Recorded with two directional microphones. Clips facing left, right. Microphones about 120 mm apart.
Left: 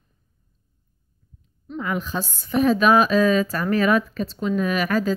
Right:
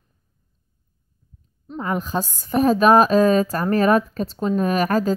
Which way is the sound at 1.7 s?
40° right (ahead or behind).